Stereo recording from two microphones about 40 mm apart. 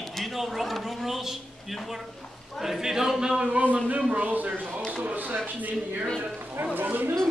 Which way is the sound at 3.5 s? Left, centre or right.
Right.